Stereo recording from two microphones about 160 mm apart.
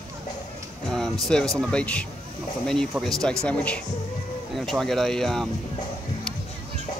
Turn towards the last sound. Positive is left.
turn(degrees=0)  # may be behind; listen again after turning